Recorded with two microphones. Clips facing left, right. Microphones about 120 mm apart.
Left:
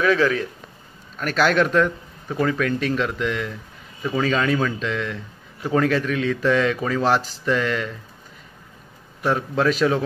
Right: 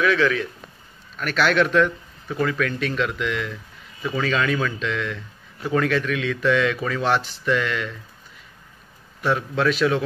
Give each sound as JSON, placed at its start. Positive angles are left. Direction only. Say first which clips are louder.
{"t": 0.0, "sound": "speech", "louder": "left 1 dB", "side_deg": 35}
{"t": 9.2, "sound": "speech", "louder": "left 1 dB", "side_deg": 35}